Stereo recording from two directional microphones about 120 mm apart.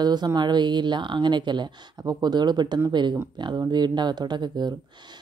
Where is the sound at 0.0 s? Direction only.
35° right (ahead or behind).